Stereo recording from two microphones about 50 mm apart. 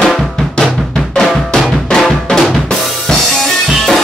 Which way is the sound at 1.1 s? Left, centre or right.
Centre.